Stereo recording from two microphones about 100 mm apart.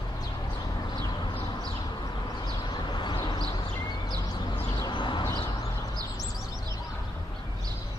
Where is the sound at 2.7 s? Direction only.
50° left (ahead or behind).